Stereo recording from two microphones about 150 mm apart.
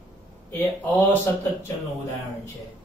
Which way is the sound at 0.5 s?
10° left (ahead or behind).